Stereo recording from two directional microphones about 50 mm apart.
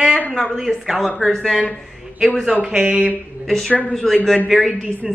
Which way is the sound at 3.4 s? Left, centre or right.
Centre.